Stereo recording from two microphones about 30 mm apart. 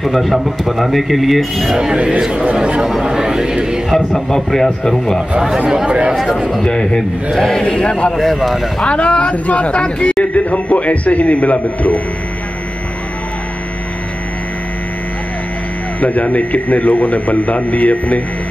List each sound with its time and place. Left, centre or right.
0.0 s speech: centre
2.0 s a man's voice: right
3.9 s a man's voice: centre
5.9 s speech: right
6.6 s a man's voice: left
7.3 s a man's voice: centre
7.7 s speech: left
8.4 s speech: centre
8.8 s speech: left
10.3 s a man's voice: left
16.0 s a man's voice: left